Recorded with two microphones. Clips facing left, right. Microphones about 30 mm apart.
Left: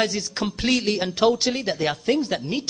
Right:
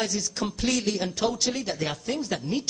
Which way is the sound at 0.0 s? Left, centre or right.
Left.